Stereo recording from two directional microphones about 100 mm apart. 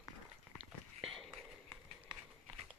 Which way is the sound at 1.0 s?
Centre (ahead or behind).